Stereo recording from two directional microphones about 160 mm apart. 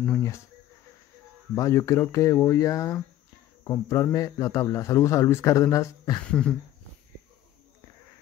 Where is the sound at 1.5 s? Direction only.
20° left (ahead or behind).